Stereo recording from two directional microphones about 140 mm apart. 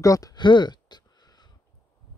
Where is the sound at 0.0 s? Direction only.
25° left (ahead or behind).